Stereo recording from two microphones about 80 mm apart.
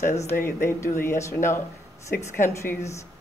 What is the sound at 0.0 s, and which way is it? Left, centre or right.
Speech, left.